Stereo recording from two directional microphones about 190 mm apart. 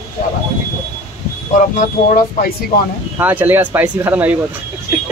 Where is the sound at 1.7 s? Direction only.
45° left (ahead or behind).